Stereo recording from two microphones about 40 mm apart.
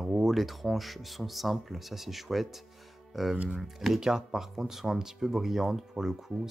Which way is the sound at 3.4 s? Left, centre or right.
Centre.